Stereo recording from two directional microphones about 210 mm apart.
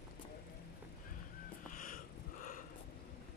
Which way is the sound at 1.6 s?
40° left (ahead or behind).